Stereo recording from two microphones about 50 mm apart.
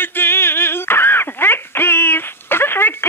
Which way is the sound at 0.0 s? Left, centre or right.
Left.